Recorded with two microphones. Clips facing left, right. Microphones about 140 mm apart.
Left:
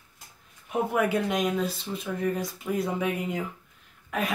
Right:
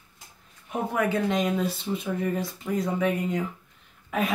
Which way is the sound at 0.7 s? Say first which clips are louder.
Left 1 dB; 5° left (ahead or behind).